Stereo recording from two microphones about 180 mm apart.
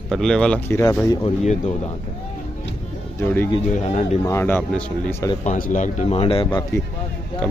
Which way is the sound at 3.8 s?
40° left (ahead or behind).